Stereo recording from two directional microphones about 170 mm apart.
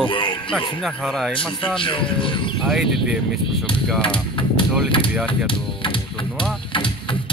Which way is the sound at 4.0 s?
30° left (ahead or behind).